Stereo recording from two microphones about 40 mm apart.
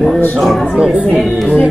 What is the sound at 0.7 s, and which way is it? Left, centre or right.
Speech, right.